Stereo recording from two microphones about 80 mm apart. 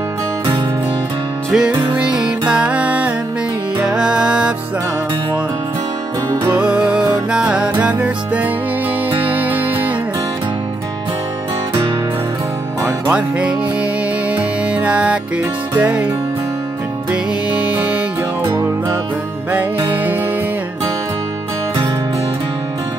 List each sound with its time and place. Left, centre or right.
1.5 s music: centre
6.5 s music: centre
13.1 s music: centre
17.1 s music: centre